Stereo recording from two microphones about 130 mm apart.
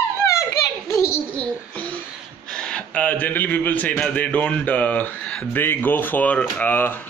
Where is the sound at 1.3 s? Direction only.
10° left (ahead or behind).